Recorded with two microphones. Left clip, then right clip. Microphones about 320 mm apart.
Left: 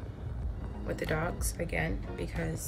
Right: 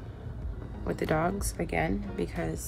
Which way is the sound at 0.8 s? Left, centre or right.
Right.